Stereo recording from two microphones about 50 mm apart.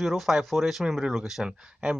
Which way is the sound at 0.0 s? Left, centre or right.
Centre.